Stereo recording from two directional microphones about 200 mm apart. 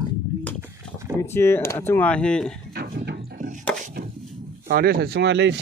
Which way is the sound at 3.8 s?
40° right (ahead or behind).